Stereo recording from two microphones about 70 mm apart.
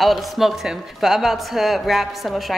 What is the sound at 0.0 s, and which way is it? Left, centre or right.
Speech, centre.